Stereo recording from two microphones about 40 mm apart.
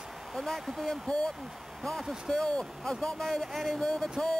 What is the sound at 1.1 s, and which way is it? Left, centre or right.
Speech, centre.